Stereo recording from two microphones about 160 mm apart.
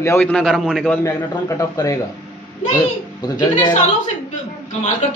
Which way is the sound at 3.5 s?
50° left (ahead or behind).